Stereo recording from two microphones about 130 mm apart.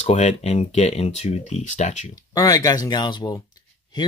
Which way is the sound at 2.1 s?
25° left (ahead or behind).